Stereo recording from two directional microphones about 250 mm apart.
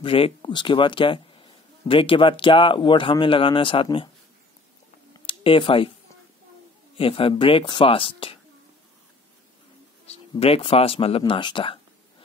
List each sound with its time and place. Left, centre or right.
0.0 s speech: left
5.2 s a sound: left
7.0 s speech: left
10.0 s speech: left